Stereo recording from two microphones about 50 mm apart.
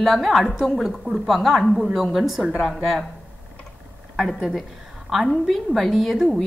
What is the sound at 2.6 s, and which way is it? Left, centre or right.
Speech, centre.